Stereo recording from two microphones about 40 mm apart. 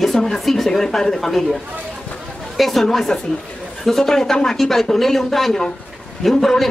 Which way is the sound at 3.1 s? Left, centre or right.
Left.